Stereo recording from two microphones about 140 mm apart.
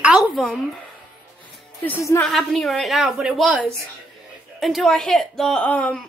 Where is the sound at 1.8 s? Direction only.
15° left (ahead or behind).